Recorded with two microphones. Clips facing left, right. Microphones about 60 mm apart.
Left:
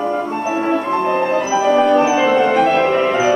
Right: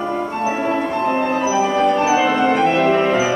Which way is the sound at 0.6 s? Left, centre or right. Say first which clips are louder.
Left 5 dB; centre.